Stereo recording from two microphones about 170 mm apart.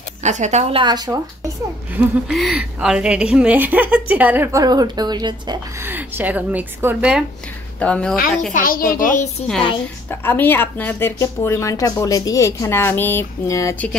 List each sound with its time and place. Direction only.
0.2 s a woman's voice: 45° right (ahead or behind); by 1.2 s 20° right (ahead or behind)
2.0 s a woman's voice: 5° right (ahead or behind); by 5.6 s 25° right (ahead or behind)
5.9 s a woman's voice: 10° right (ahead or behind)
7.8 s speech: 5° left (ahead or behind)
8.5 s a woman's voice: 55° left (ahead or behind)
10.2 s speech: 10° left (ahead or behind)